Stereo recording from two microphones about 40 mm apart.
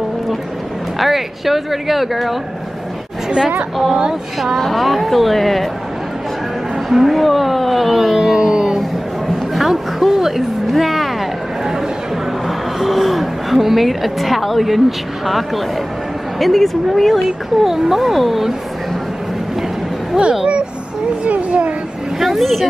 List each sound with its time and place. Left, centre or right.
0.9 s speech: centre
3.9 s speech: right
4.6 s speech: centre
6.9 s speech: centre
8.4 s music: centre
9.5 s a sound: centre
12.4 s a sound: centre
16.3 s speech: centre
20.2 s speech: centre
21.2 s a sound: right
22.2 s speech: centre